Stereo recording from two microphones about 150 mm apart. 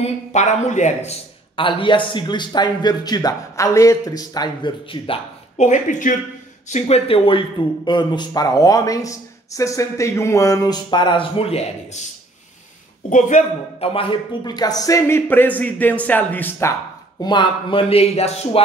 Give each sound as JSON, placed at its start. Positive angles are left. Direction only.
{"t": 0.0, "sound": "speech", "side_deg": 50}
{"t": 1.6, "sound": "speech", "side_deg": 35}
{"t": 5.6, "sound": "speech", "side_deg": 55}
{"t": 6.7, "sound": "speech", "side_deg": 40}
{"t": 13.1, "sound": "speech", "side_deg": 55}
{"t": 17.2, "sound": "speech", "side_deg": 30}